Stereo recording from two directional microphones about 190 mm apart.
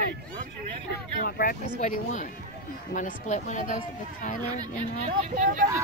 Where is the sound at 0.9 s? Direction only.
50° left (ahead or behind).